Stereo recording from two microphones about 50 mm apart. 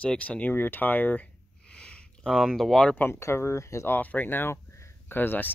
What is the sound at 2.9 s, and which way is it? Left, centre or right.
Speech, left.